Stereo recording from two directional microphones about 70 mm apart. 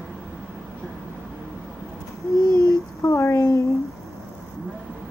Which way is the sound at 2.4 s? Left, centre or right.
Left.